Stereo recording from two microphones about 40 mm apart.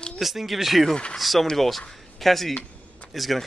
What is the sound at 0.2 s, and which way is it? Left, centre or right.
Speech, centre.